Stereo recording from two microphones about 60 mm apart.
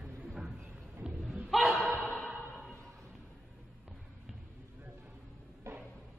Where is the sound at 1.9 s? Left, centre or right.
Left.